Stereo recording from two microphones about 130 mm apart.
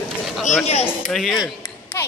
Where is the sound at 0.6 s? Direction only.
55° left (ahead or behind).